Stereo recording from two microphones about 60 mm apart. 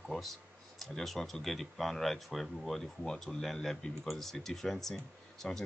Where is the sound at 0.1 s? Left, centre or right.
Centre.